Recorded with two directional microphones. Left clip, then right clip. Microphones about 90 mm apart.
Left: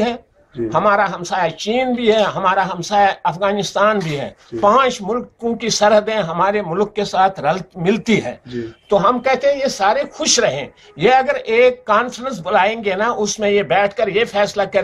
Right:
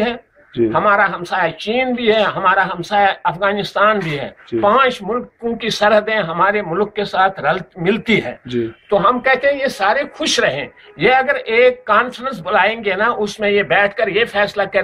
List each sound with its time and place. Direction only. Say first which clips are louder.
0.7 s speech: right 1 dB; 25° left (ahead or behind)
9.2 s speech: right 1 dB; 25° left (ahead or behind)